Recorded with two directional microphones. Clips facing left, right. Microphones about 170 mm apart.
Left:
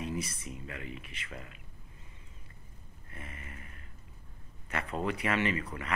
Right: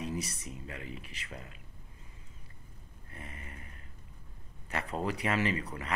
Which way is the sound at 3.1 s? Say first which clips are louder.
Even; 35° right (ahead or behind).